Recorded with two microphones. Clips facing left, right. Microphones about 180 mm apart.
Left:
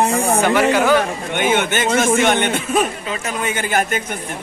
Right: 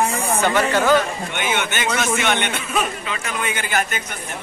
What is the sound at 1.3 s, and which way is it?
A man's voice, 50° left (ahead or behind).